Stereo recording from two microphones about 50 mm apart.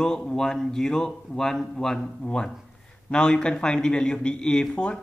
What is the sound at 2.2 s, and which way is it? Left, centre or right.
A man's voice, centre.